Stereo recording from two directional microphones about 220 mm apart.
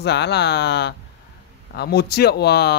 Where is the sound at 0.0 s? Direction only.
50° left (ahead or behind).